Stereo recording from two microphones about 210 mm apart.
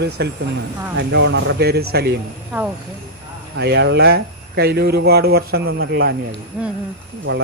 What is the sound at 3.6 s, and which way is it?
Speech, 55° right (ahead or behind).